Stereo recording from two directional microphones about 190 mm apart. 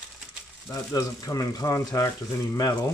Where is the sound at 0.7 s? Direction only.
15° left (ahead or behind).